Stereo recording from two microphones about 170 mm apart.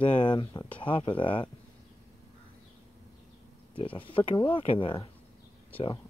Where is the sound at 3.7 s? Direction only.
30° left (ahead or behind).